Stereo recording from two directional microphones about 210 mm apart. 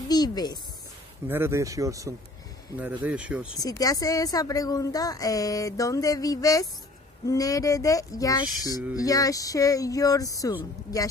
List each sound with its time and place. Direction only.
0.1 s speech: 20° left (ahead or behind)
1.2 s speech: 10° right (ahead or behind)
3.5 s a woman's voice: 15° left (ahead or behind)